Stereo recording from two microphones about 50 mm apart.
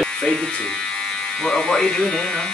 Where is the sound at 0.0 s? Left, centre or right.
Centre.